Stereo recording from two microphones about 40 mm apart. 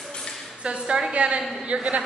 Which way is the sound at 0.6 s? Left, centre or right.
Right.